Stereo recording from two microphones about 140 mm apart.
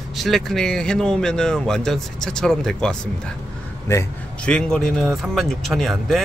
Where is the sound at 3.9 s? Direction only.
20° left (ahead or behind).